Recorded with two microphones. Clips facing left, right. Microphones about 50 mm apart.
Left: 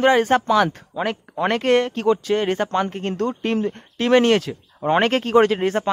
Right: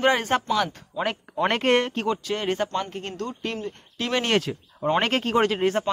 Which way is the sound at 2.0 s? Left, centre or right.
Centre.